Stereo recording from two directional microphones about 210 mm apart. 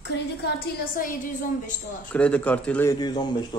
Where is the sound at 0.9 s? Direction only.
40° left (ahead or behind).